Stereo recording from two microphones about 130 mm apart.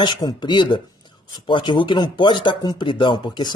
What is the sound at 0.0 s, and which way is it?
Speech, 35° left (ahead or behind).